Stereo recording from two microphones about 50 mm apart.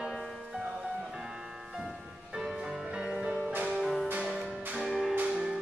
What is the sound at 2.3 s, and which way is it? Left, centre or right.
Music, centre.